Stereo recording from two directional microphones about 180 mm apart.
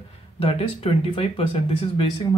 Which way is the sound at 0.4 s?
30° left (ahead or behind).